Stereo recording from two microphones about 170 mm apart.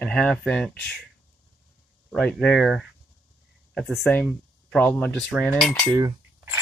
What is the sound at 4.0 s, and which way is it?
Speech, 5° left (ahead or behind).